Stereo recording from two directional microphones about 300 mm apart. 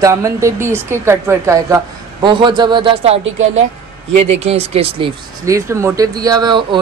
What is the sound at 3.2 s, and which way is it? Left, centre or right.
Speech, right.